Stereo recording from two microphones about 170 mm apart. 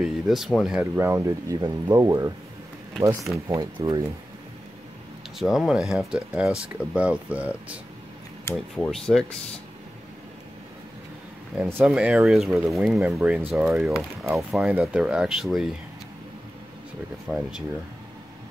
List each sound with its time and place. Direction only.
0.0 s speech: centre (ahead or behind)
0.9 s speech: 15° right (ahead or behind)
3.4 s speech: 20° right (ahead or behind)
5.4 s speech: centre (ahead or behind)
8.5 s speech: 5° left (ahead or behind)
11.5 s speech: 10° right (ahead or behind)
17.3 s speech: 10° right (ahead or behind)